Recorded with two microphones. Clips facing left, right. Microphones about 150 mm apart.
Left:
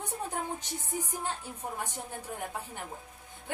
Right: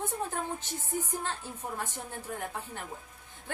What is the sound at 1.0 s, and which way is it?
Speech, 15° left (ahead or behind).